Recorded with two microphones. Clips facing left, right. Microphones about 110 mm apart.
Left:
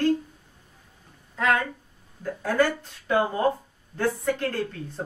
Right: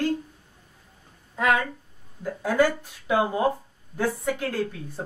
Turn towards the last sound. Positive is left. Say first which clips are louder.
# right 1 dB
turn(degrees=-10)  # may be behind; listen again after turning